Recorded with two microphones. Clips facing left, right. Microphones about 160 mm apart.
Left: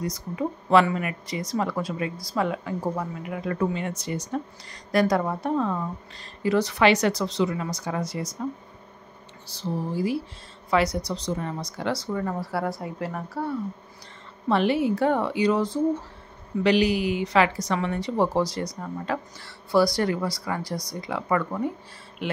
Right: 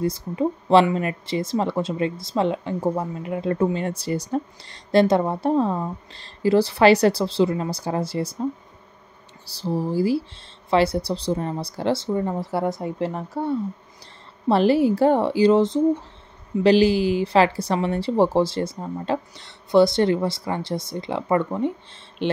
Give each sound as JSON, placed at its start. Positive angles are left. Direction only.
{"t": 0.0, "sound": "speech", "side_deg": -30}
{"t": 9.5, "sound": "speech", "side_deg": -35}
{"t": 14.5, "sound": "speech", "side_deg": -35}
{"t": 22.2, "sound": "a sound", "side_deg": -30}